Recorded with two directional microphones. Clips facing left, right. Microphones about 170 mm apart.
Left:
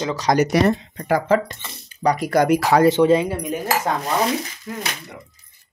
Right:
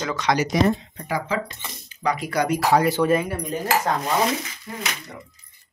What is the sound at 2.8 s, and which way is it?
Speech, 20° left (ahead or behind).